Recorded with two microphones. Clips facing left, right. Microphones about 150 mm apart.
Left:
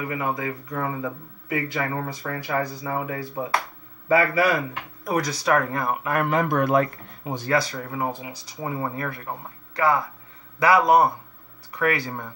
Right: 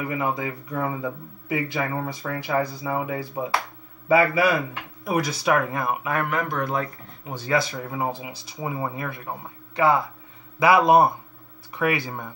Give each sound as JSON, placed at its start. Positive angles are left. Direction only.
{"t": 0.1, "sound": "speech", "side_deg": -25}
{"t": 6.5, "sound": "speech", "side_deg": 65}
{"t": 7.4, "sound": "speech", "side_deg": -25}
{"t": 9.8, "sound": "speech", "side_deg": -25}